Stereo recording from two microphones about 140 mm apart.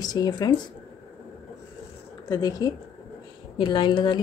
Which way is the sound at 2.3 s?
30° left (ahead or behind).